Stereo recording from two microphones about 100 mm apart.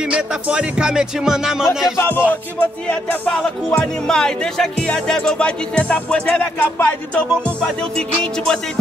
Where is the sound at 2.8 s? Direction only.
10° left (ahead or behind).